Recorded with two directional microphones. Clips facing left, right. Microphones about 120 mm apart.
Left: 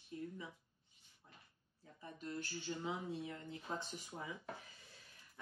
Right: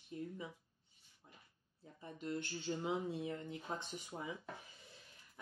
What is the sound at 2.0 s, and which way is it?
Speech, 25° right (ahead or behind).